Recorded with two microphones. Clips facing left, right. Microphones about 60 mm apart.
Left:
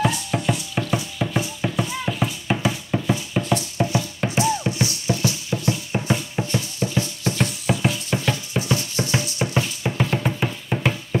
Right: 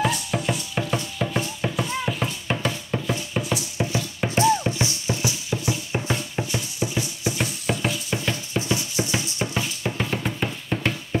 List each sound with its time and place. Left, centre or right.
0.0 s music: centre
4.7 s music: right
5.5 s music: centre
9.1 s music: centre